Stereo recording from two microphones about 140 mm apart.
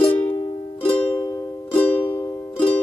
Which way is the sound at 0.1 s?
15° left (ahead or behind).